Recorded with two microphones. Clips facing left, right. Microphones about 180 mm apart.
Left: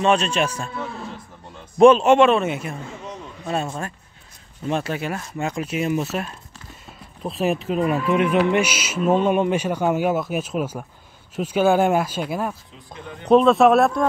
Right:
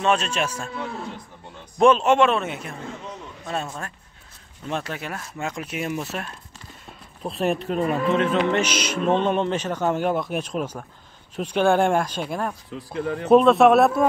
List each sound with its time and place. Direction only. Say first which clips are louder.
0.0 s speech: left 3 dB; centre (ahead or behind)
1.8 s speech: left 4 dB; centre (ahead or behind)
4.6 s speech: left 5 dB; 5° left (ahead or behind)
7.8 s speech: left 1 dB; 15° left (ahead or behind)
12.7 s a man's voice: right 11 dB; 75° right (ahead or behind)
13.2 s speech: even; 5° right (ahead or behind)